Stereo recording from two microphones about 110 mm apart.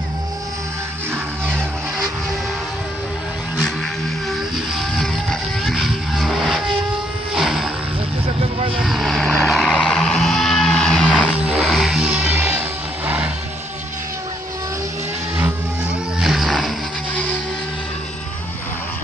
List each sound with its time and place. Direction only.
4.3 s music: centre (ahead or behind)
7.3 s wild animals: centre (ahead or behind)
8.8 s vehicle: centre (ahead or behind)
11.1 s a sound: 10° right (ahead or behind)
11.7 s music: centre (ahead or behind)
12.1 s music: 15° right (ahead or behind)
16.2 s a sound: centre (ahead or behind)